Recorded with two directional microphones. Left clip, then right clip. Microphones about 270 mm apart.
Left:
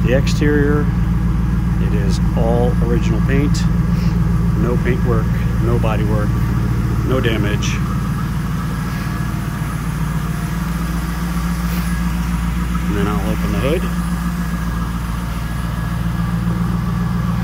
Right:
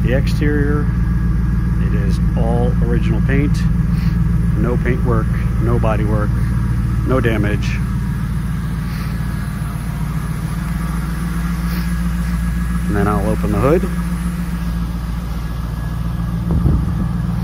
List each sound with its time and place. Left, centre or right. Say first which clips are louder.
0.0 s speech: left 3 dB; centre
2.0 s speech: left 3 dB; centre
4.6 s speech: even; centre
13.0 s speech: right 5 dB; centre